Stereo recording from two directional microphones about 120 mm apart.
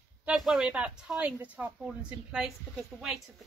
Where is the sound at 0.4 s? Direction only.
5° right (ahead or behind).